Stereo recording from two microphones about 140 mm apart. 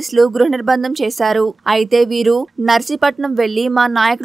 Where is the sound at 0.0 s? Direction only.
Centre (ahead or behind).